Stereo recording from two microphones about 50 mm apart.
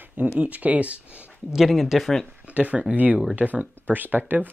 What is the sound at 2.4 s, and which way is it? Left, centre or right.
Speech, right.